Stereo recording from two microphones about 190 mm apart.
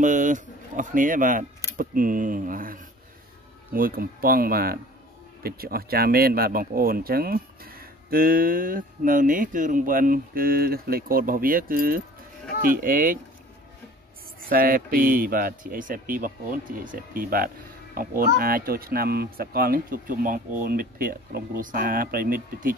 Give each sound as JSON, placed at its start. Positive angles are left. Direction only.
{"t": 0.0, "sound": "speech", "side_deg": -40}
{"t": 14.5, "sound": "speech", "side_deg": -50}